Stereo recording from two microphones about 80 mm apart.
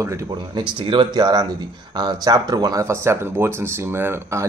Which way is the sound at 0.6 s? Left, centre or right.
Right.